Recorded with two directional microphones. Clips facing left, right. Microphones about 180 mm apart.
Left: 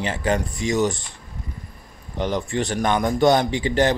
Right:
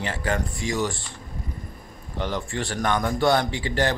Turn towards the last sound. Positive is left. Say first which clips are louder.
# left 5 dB
turn(degrees=20)  # may be behind; listen again after turning